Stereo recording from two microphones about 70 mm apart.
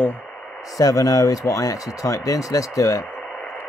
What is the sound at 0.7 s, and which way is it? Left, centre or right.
Speech, left.